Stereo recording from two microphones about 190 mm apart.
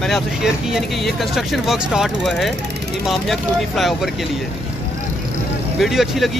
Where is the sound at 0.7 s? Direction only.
Centre (ahead or behind).